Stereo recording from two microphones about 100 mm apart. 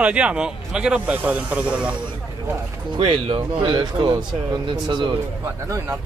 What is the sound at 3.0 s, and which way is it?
Speech, 60° right (ahead or behind).